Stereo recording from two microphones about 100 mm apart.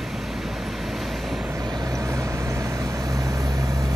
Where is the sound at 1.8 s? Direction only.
35° right (ahead or behind).